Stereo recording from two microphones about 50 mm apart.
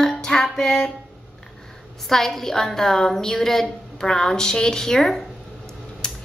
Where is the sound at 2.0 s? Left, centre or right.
Centre.